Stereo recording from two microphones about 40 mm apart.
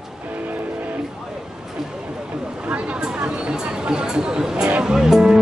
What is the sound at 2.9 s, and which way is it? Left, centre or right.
Chatter, right.